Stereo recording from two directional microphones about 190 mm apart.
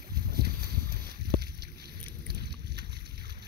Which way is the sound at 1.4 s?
55° right (ahead or behind).